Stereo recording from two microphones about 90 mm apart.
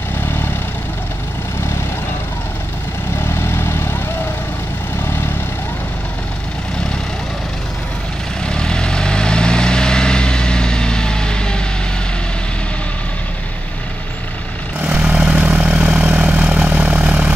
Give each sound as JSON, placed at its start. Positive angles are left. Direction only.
{"t": 3.4, "sound": "vehicle", "side_deg": 25}
{"t": 8.5, "sound": "vehicle", "side_deg": 10}
{"t": 14.8, "sound": "vehicle", "side_deg": -15}